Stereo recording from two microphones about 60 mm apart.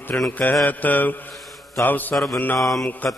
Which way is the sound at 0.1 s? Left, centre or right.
Left.